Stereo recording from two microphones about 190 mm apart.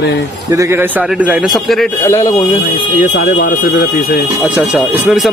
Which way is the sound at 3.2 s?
45° left (ahead or behind).